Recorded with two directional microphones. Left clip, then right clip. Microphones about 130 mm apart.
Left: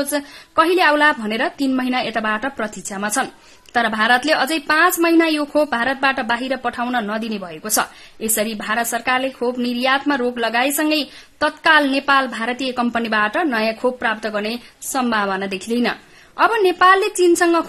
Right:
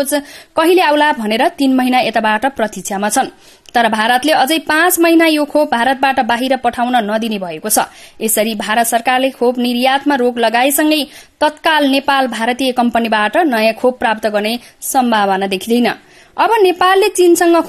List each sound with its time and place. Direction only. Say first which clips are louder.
0.0 s speech: right 6 dB; 45° right (ahead or behind)
12.9 s speech: right 3 dB; 45° right (ahead or behind)